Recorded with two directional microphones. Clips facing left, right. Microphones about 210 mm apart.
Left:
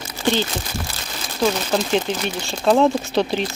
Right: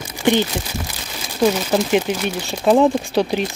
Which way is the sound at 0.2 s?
15° right (ahead or behind).